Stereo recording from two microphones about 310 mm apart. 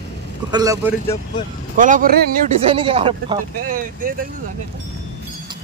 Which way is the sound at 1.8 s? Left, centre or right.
Right.